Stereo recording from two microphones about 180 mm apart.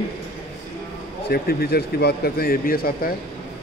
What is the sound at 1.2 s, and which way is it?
Speech, 60° left (ahead or behind).